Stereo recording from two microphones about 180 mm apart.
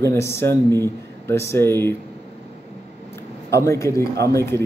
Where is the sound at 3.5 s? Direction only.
15° left (ahead or behind).